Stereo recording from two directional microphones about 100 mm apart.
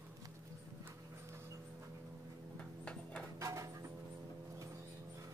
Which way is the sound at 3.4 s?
30° right (ahead or behind).